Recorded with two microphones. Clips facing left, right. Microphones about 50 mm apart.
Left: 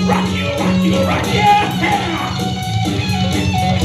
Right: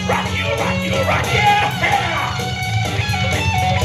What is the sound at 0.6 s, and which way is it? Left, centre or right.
Music, right.